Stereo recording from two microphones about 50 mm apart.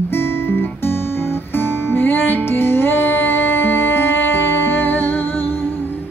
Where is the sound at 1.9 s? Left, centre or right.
Left.